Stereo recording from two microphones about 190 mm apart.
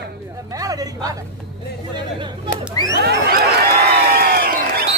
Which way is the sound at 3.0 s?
55° right (ahead or behind).